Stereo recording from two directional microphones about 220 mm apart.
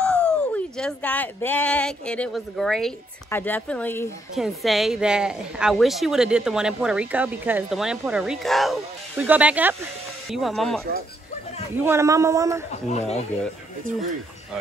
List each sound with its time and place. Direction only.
0.0 s speech: 5° left (ahead or behind)
4.4 s a woman's voice: centre (ahead or behind)
11.8 s speech: 10° right (ahead or behind)
12.9 s speech: 30° left (ahead or behind)